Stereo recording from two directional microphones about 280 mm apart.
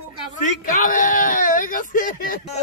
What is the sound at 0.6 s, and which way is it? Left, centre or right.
Speech, left.